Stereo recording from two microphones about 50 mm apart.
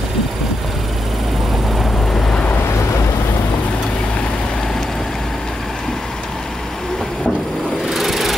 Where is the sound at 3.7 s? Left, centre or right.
Left; by 5.2 s centre.